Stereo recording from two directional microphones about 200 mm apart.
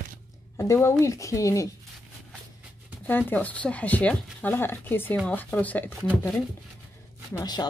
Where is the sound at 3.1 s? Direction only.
10° left (ahead or behind).